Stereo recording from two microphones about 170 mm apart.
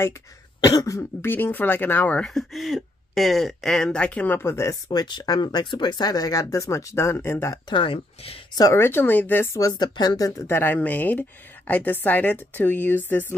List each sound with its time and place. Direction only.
0.7 s speech: 20° left (ahead or behind)
7.7 s speech: 30° left (ahead or behind)
8.5 s speech: 15° left (ahead or behind)